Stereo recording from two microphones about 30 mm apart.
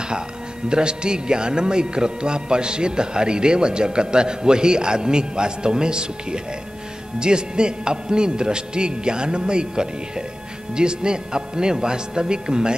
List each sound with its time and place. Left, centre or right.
0.7 s speech: right